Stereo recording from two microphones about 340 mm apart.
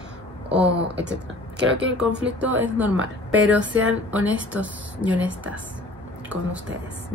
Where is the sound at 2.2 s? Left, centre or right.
Centre.